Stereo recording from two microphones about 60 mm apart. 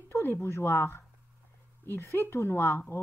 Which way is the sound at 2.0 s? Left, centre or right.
Left.